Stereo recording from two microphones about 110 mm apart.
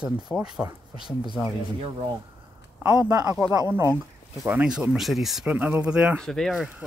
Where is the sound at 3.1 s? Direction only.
35° right (ahead or behind).